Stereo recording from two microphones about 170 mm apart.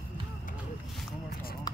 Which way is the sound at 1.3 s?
60° left (ahead or behind).